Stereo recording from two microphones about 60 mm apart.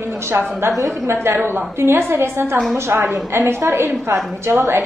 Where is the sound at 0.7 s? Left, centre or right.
Right.